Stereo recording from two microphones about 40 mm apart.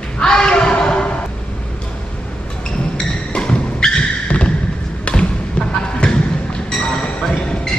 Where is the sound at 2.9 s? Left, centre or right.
Left.